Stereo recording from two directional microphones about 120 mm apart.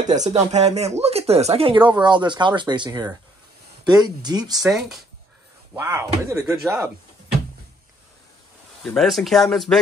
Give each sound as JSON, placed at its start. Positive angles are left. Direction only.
{"t": 0.0, "sound": "speech", "side_deg": -80}
{"t": 0.3, "sound": "speech", "side_deg": -65}
{"t": 4.6, "sound": "speech", "side_deg": -5}
{"t": 5.8, "sound": "speech", "side_deg": -20}
{"t": 8.8, "sound": "speech", "side_deg": 0}